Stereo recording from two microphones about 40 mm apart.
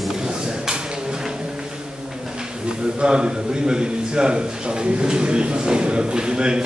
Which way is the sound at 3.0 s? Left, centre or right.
Right.